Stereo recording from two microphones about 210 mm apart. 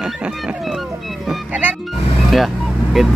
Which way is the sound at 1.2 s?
5° right (ahead or behind).